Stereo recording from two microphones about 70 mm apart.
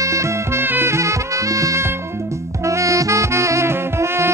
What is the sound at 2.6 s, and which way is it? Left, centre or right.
Saxophone, right.